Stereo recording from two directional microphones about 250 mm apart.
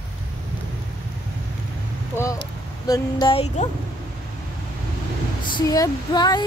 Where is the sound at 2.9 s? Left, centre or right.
Centre.